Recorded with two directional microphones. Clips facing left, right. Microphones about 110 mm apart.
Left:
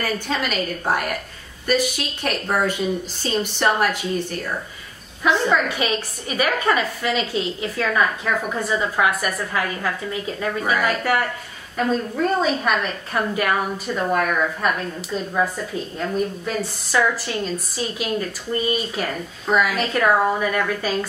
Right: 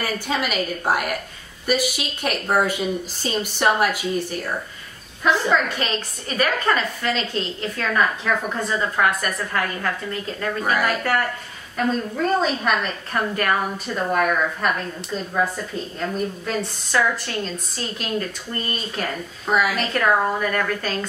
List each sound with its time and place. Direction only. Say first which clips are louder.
0.0 s a woman's voice: even; 5° right (ahead or behind)
5.2 s a woman's voice: left 1 dB; 5° left (ahead or behind)
16.4 s a woman's voice: even; 5° left (ahead or behind)
19.4 s a woman's voice: left 1 dB; 5° right (ahead or behind)